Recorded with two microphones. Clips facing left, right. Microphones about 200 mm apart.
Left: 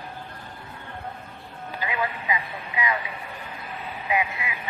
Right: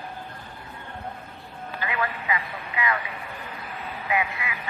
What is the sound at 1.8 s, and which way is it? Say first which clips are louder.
Vehicle: even; 15° left (ahead or behind).